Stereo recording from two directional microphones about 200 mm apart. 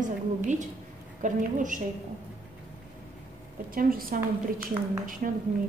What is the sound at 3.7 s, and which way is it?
Speech, 45° right (ahead or behind).